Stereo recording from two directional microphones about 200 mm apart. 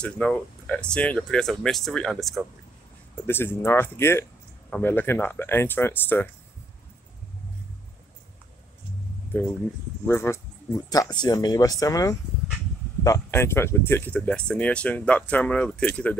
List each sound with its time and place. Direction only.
0.0 s speech: 5° left (ahead or behind)
3.3 s speech: 10° left (ahead or behind)
10.0 s speech: 10° left (ahead or behind)